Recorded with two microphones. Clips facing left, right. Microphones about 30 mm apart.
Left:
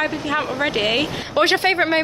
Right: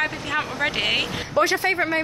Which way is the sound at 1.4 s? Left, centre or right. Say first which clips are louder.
Left 3 dB; left.